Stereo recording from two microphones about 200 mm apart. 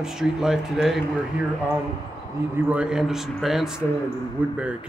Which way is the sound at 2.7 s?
5° right (ahead or behind).